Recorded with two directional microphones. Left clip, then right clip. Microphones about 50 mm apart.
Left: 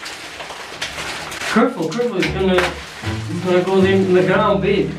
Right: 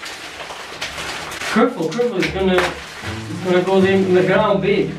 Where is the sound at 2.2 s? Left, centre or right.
Left.